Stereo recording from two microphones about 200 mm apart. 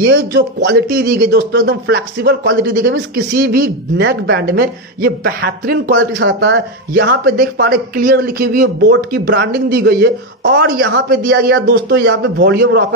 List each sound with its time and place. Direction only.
0.3 s a man's voice: 50° right (ahead or behind)